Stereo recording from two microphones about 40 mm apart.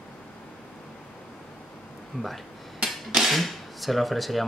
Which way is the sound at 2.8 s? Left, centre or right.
Centre.